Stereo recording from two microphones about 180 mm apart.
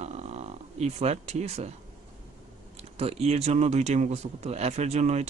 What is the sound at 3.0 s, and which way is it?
Speech, 35° right (ahead or behind).